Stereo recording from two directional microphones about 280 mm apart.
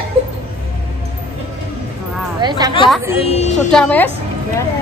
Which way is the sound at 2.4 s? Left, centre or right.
Centre.